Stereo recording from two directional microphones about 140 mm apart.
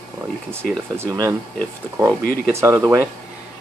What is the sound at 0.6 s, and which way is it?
Speech, 90° left.